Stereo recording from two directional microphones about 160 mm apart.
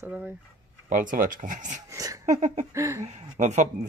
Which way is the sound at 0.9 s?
55° right (ahead or behind).